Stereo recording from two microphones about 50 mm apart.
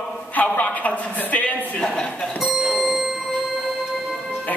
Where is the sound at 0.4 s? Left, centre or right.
Left.